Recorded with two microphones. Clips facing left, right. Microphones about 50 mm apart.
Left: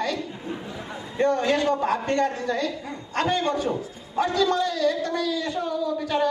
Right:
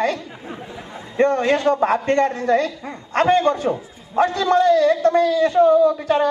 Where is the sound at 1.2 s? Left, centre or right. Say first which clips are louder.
Right 4 dB; right.